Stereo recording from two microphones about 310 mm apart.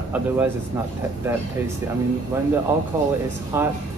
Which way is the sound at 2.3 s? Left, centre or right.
Centre.